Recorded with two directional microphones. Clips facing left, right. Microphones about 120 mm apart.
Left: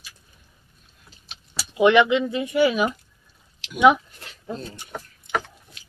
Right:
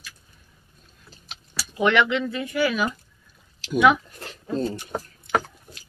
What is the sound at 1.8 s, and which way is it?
Speech, 15° left (ahead or behind).